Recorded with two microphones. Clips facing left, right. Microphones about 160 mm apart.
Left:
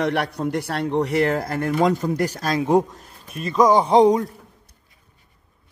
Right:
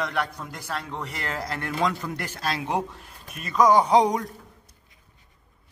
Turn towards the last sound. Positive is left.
turn(degrees=25)  # may be behind; listen again after turning